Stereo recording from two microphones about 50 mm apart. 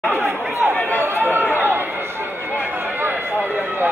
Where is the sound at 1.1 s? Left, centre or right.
Right.